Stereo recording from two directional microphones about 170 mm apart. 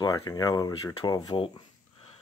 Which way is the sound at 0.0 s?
25° left (ahead or behind).